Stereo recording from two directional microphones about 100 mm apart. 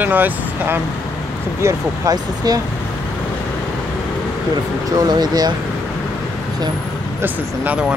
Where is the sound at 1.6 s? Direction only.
30° right (ahead or behind).